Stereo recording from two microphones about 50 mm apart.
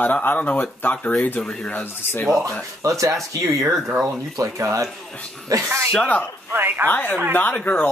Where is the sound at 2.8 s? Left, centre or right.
Right.